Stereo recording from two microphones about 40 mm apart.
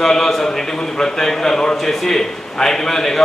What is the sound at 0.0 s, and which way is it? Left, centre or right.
A man's voice, centre.